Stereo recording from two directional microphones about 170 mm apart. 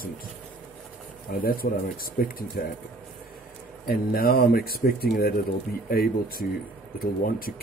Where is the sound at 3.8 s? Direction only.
60° left (ahead or behind).